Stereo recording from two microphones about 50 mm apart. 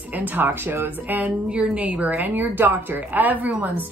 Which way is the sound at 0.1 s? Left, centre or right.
Right.